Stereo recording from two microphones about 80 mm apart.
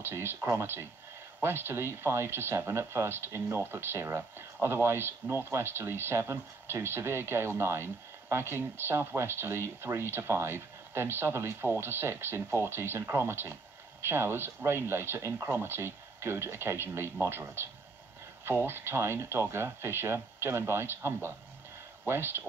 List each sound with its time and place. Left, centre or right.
0.0 s speech: right